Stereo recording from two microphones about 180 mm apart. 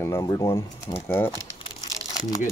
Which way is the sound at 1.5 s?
20° left (ahead or behind).